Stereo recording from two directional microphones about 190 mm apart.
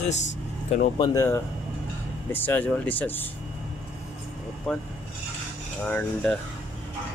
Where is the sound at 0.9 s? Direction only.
20° left (ahead or behind).